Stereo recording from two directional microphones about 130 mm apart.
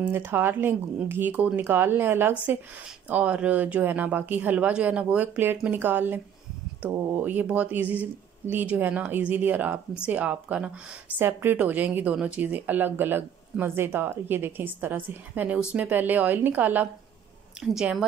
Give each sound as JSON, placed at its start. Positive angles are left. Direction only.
{"t": 0.0, "sound": "a woman's voice", "side_deg": -15}